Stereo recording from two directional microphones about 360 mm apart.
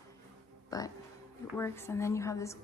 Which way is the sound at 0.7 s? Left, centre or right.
Centre.